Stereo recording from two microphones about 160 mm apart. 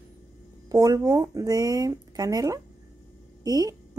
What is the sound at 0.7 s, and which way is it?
A woman's voice, 20° right (ahead or behind).